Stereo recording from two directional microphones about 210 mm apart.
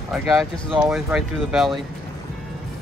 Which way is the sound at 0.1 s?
Centre (ahead or behind).